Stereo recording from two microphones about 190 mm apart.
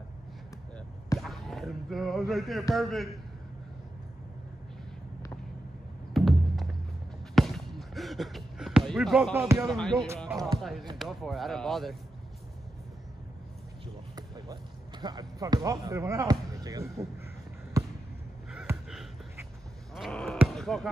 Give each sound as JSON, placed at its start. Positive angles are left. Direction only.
{"t": 1.2, "sound": "speech", "side_deg": 0}
{"t": 6.1, "sound": "music", "side_deg": 0}
{"t": 7.3, "sound": "basketball bounce", "side_deg": 0}
{"t": 9.3, "sound": "speech", "side_deg": -15}
{"t": 9.7, "sound": "speech", "side_deg": 0}
{"t": 14.1, "sound": "speech", "side_deg": -20}
{"t": 17.8, "sound": "basketball bounce", "side_deg": -15}
{"t": 19.9, "sound": "a sound", "side_deg": 0}
{"t": 20.3, "sound": "speech", "side_deg": 0}